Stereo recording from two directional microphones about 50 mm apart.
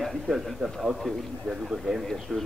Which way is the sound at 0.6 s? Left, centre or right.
Right.